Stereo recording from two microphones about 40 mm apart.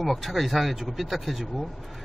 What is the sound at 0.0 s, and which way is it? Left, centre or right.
A man's voice, centre.